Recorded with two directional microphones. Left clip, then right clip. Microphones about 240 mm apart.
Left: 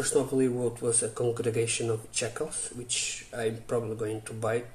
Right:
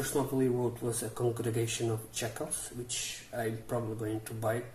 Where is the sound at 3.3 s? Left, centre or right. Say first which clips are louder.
Left 4 dB; centre.